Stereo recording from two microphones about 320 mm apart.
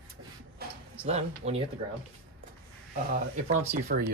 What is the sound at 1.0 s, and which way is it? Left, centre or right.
Speech, centre.